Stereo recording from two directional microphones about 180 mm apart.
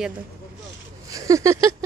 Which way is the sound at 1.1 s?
20° right (ahead or behind).